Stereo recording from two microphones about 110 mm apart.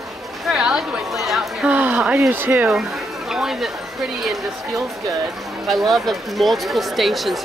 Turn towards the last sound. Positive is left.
turn(degrees=0)  # may be behind; listen again after turning